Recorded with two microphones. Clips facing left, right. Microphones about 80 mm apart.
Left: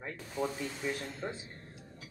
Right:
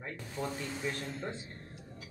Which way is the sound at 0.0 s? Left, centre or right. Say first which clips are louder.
Left 3 dB; centre.